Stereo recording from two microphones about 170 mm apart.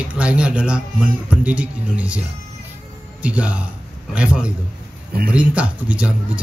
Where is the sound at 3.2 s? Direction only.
5° right (ahead or behind).